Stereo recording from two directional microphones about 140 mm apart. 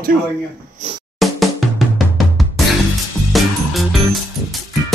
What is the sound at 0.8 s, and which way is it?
Music, 55° right (ahead or behind).